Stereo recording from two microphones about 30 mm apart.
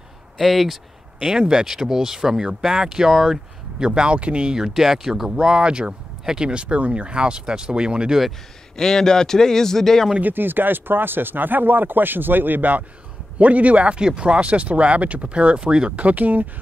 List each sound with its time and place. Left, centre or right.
0.4 s speech: centre
1.7 s speech: centre
3.8 s speech: right
4.1 s speech: right
4.7 s speech: centre
5.4 s speech: right
6.2 s speech: right
6.5 s speech: right
8.7 s a man's voice: centre
10.1 s speech: right
13.4 s speech: right
13.8 s speech: right
16.0 s speech: right